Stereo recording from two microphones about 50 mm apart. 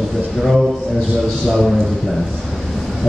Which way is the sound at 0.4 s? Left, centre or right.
Centre.